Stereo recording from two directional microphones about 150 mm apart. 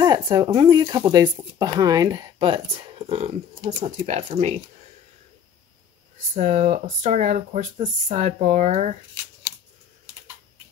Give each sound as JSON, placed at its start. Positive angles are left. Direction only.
{"t": 0.0, "sound": "speech", "side_deg": -30}
{"t": 6.1, "sound": "speech", "side_deg": -50}